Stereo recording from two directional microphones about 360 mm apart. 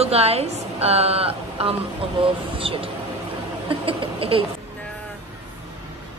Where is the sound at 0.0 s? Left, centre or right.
Centre.